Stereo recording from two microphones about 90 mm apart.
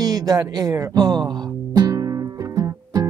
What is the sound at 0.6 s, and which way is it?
Music, 40° right (ahead or behind).